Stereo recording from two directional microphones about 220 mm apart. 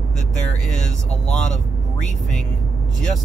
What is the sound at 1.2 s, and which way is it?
Speech, 35° left (ahead or behind).